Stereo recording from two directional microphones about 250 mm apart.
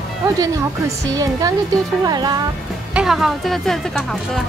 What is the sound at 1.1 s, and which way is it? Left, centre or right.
Speech, centre.